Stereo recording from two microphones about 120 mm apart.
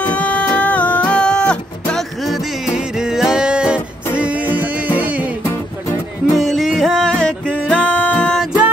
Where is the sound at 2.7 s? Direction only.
5° right (ahead or behind).